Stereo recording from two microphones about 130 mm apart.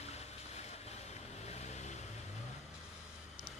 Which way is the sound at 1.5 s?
60° left (ahead or behind).